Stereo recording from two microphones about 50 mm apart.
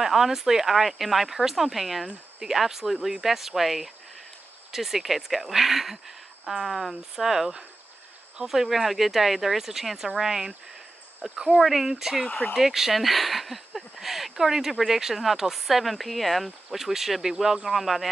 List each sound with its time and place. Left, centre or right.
0.0 s speech: centre
12.3 s speech: left
12.5 s speech: centre